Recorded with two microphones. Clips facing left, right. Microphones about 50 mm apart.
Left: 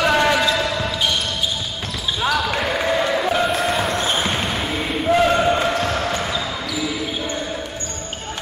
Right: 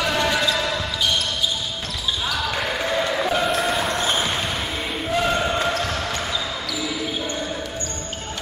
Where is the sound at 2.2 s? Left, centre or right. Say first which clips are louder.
Left 6 dB; centre.